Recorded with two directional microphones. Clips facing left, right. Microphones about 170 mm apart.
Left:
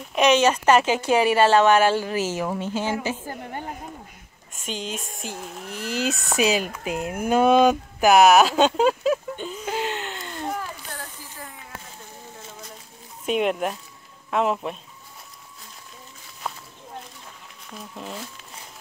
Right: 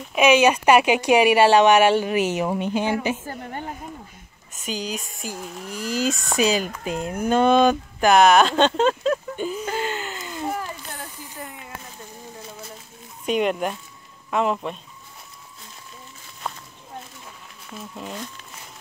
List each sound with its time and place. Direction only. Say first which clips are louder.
0.1 s speech: right 2 dB; 10° right (ahead or behind)
4.5 s speech: right 2 dB; centre (ahead or behind)
9.4 s a sound: right 2 dB; 10° right (ahead or behind)
10.9 s a sound: right 1 dB; 20° right (ahead or behind)
13.2 s speech: right 1 dB; centre (ahead or behind)
16.5 s walk: even; 5° left (ahead or behind)
17.6 s speech: right 1 dB; centre (ahead or behind)